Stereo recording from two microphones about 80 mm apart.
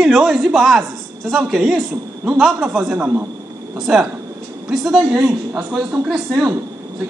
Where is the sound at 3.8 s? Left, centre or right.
Centre.